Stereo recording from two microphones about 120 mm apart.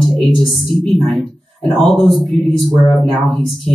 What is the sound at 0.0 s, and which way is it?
A woman's voice, centre (ahead or behind).